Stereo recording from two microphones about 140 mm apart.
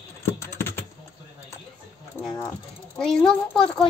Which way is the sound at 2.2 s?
15° left (ahead or behind).